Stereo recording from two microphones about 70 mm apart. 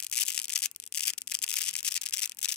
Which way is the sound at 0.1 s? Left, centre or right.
Centre.